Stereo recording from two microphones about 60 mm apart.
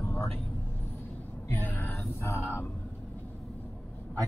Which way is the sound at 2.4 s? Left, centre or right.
Left.